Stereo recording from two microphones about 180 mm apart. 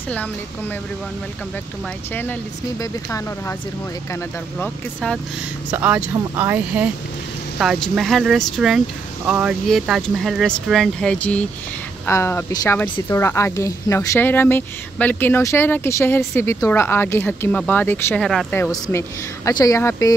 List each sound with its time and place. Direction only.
2.8 s speech: 15° left (ahead or behind)
5.7 s speech: 10° right (ahead or behind); by 18.2 s 10° left (ahead or behind)
18.2 s speech: centre (ahead or behind)
18.6 s speech: 15° left (ahead or behind)